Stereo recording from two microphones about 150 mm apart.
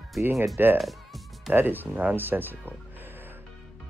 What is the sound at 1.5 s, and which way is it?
Speech, 15° right (ahead or behind).